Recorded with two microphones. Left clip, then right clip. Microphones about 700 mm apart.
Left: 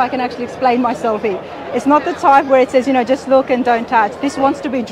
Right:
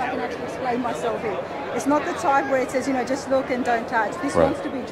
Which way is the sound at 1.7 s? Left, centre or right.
Left.